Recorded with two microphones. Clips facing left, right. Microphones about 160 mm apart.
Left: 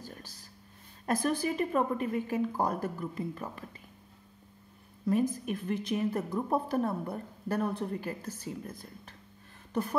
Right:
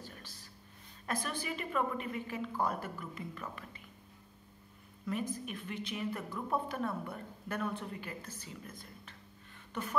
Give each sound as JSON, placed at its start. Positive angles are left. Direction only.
{"t": 0.0, "sound": "a sound", "side_deg": 40}
{"t": 1.0, "sound": "a woman's voice", "side_deg": 40}
{"t": 5.0, "sound": "a woman's voice", "side_deg": 40}